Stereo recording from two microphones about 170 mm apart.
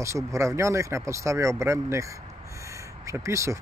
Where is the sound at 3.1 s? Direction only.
15° right (ahead or behind).